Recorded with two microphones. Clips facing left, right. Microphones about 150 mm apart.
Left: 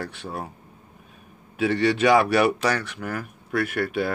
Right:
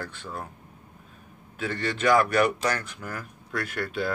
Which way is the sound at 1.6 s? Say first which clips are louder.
Left 9 dB; 75° left (ahead or behind).